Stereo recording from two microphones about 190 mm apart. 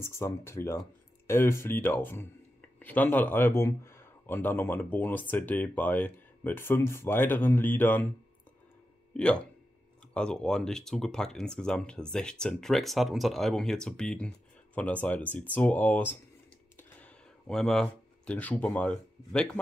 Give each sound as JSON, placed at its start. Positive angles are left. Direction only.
{"t": 0.0, "sound": "speech", "side_deg": 15}
{"t": 9.1, "sound": "speech", "side_deg": 5}